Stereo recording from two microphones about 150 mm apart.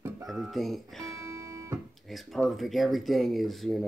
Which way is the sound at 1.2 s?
20° right (ahead or behind).